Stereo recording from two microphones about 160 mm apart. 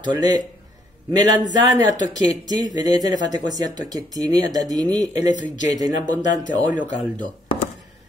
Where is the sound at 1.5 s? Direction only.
25° right (ahead or behind).